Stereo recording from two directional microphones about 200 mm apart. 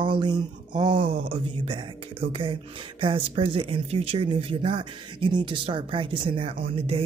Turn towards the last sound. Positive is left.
turn(degrees=-25)  # may be behind; listen again after turning